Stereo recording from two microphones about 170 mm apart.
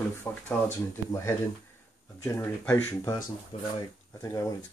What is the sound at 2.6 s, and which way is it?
Speech, 10° left (ahead or behind).